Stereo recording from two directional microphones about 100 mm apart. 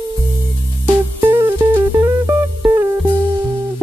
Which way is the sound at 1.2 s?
25° right (ahead or behind).